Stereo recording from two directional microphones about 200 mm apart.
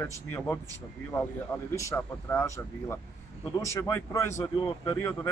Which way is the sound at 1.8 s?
15° left (ahead or behind).